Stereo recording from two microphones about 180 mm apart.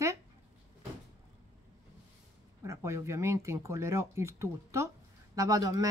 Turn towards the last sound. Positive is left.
turn(degrees=-20)  # may be behind; listen again after turning